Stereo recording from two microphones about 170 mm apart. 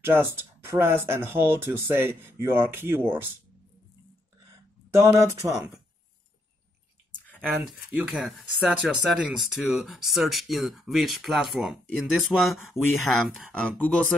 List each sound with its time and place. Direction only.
0.0 s speech: 15° right (ahead or behind)
4.9 s speech: 15° right (ahead or behind)
7.2 s a sound: 5° left (ahead or behind)
7.9 s speech: 5° right (ahead or behind)